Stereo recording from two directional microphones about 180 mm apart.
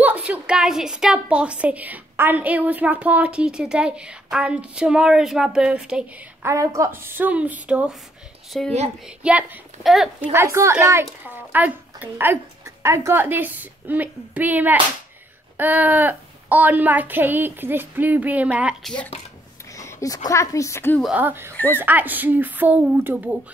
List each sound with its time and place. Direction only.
0.0 s a woman's voice: 10° right (ahead or behind)
6.5 s a child's voice: 15° right (ahead or behind)
19.7 s a sound: 20° left (ahead or behind)
20.2 s a woman's voice: 15° left (ahead or behind)
21.0 s a child's voice: 10° right (ahead or behind)